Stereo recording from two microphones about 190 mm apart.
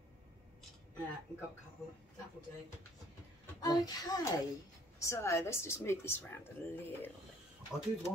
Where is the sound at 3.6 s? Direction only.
20° left (ahead or behind).